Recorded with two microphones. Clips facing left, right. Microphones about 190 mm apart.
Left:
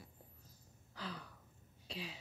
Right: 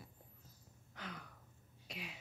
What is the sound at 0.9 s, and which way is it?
Gasp, 30° left (ahead or behind).